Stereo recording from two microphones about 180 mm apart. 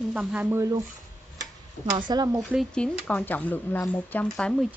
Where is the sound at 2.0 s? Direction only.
25° right (ahead or behind).